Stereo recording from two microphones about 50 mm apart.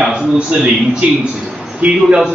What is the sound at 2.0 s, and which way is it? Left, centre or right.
Speech, centre.